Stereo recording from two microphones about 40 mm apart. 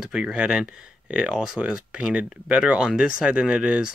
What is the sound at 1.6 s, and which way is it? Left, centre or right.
Speech, right.